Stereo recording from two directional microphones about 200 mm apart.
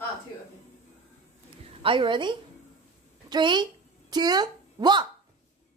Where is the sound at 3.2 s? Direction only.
20° right (ahead or behind).